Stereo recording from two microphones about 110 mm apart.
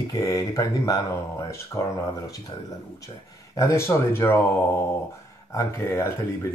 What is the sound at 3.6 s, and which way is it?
Speech, 25° left (ahead or behind).